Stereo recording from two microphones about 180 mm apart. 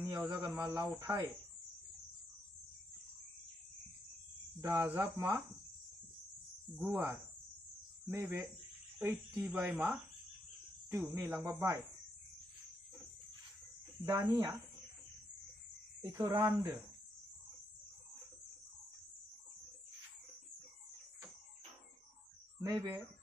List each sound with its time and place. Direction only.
0.1 s a man's voice: 15° right (ahead or behind)
4.6 s a man's voice: 15° right (ahead or behind)
6.9 s a man's voice: 15° right (ahead or behind)
11.1 s a man's voice: 15° right (ahead or behind)
14.0 s a man's voice: 15° right (ahead or behind)
16.0 s a man's voice: 20° right (ahead or behind)
22.6 s speech: 25° right (ahead or behind)